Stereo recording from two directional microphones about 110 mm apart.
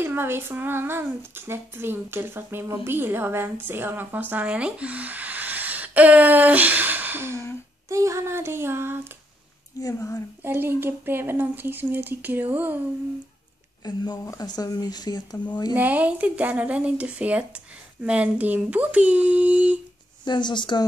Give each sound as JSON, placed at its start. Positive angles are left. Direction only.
{"t": 0.0, "sound": "speech", "side_deg": -20}
{"t": 9.8, "sound": "speech", "side_deg": 30}
{"t": 10.4, "sound": "speech", "side_deg": -20}
{"t": 13.8, "sound": "speech", "side_deg": 40}
{"t": 15.7, "sound": "speech", "side_deg": -15}
{"t": 20.2, "sound": "speech", "side_deg": 45}